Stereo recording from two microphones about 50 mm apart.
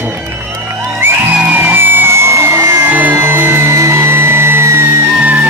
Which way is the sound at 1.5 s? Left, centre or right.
Right.